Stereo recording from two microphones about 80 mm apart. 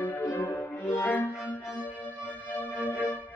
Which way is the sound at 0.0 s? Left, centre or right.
Left.